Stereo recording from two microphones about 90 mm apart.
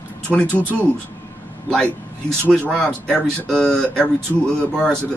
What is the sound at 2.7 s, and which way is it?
Speech, 10° left (ahead or behind).